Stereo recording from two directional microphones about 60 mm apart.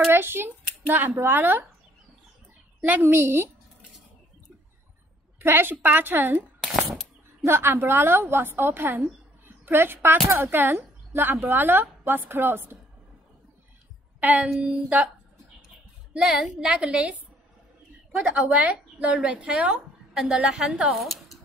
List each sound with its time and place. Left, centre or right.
0.1 s a child's voice: right
2.8 s a woman's voice: right
3.1 s speech: right
5.4 s a woman's voice: right
6.6 s a sound: centre
7.4 s a woman's voice: right
14.2 s a woman's voice: right
16.2 s a woman's voice: centre
16.6 s a woman's voice: centre
18.3 s a woman's voice: right
19.2 s a woman's voice: centre
20.9 s a woman's voice: centre